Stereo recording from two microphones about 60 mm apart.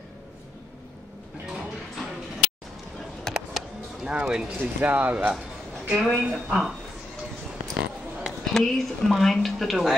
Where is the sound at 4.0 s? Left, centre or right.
Centre.